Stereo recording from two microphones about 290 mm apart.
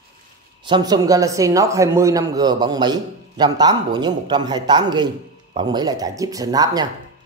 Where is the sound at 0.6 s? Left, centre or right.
Centre.